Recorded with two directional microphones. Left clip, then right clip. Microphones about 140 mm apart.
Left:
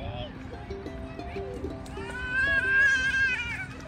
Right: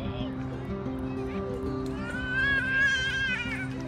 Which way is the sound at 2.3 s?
45° left (ahead or behind).